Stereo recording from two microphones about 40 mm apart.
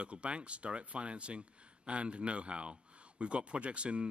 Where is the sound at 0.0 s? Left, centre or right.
Right.